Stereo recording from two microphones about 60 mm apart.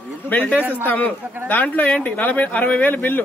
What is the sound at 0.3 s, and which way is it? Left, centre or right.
Speech, left.